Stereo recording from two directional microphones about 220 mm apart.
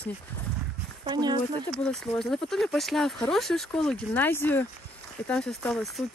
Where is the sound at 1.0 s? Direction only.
20° right (ahead or behind).